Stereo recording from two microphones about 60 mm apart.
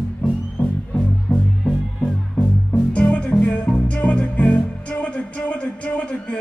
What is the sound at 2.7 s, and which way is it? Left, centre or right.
Music, left.